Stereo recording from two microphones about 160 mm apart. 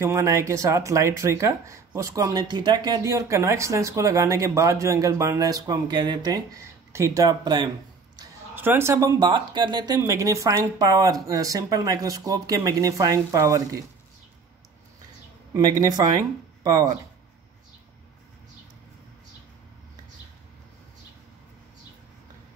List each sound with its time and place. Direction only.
0.0 s speech: 20° right (ahead or behind)
8.5 s speech: 15° right (ahead or behind)
9.2 s speech: 30° right (ahead or behind)
15.5 s speech: 20° right (ahead or behind)